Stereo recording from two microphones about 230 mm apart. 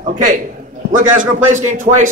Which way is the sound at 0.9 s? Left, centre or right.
Right.